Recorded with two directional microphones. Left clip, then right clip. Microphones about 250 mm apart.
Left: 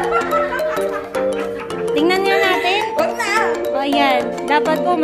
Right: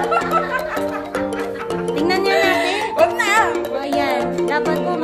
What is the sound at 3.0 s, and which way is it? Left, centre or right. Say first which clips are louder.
Music: right 3 dB; right.